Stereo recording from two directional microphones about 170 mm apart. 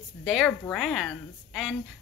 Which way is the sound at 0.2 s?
Centre (ahead or behind).